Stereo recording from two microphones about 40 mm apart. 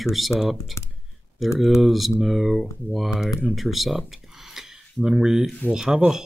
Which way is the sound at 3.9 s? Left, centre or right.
Centre.